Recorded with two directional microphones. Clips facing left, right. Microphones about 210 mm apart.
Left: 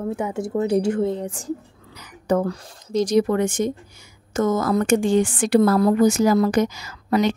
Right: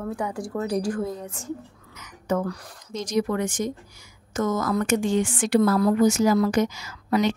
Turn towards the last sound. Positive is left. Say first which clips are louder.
# left 3 dB
turn(degrees=35)  # may be behind; listen again after turning